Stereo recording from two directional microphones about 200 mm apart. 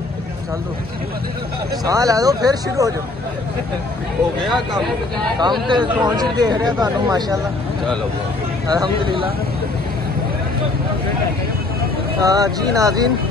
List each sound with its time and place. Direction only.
1.9 s speech: 15° right (ahead or behind)
5.4 s speech: 20° right (ahead or behind)
8.6 s speech: 20° right (ahead or behind)
12.2 s speech: 20° right (ahead or behind)